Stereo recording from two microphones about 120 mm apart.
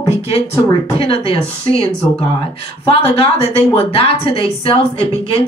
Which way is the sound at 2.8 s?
50° left (ahead or behind).